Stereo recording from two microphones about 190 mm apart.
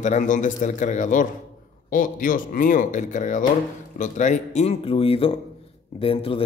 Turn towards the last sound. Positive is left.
turn(degrees=30)  # may be behind; listen again after turning